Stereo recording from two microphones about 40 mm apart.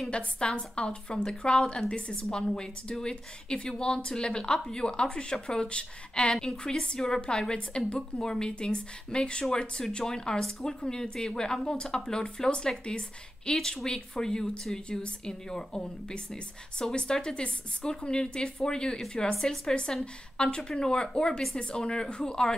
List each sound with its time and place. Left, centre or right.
0.1 s a woman's voice: left